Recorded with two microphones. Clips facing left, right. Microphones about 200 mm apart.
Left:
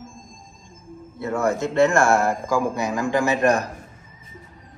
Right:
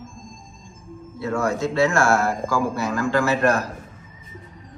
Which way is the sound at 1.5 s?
20° left (ahead or behind).